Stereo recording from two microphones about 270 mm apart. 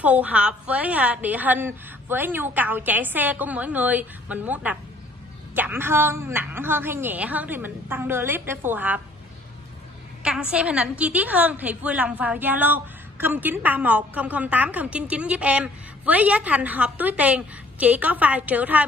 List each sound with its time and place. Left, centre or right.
0.0 s a woman's voice: centre
10.2 s a woman's voice: centre